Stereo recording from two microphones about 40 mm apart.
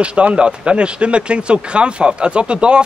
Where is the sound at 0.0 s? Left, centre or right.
Right.